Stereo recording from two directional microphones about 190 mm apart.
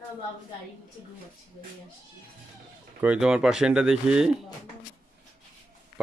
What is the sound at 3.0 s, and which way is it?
Speech, 5° right (ahead or behind).